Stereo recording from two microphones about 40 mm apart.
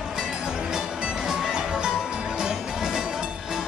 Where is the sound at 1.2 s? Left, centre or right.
Centre.